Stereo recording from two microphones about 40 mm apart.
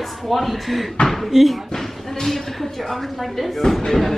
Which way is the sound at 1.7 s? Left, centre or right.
Centre.